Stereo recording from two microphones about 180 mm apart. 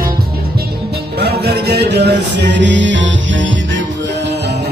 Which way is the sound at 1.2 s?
65° right (ahead or behind).